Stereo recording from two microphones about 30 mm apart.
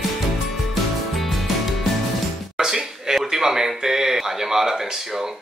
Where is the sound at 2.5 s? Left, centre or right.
Centre.